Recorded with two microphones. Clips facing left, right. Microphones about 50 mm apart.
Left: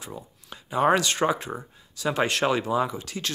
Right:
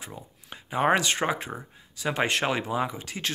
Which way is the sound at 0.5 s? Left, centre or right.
Right.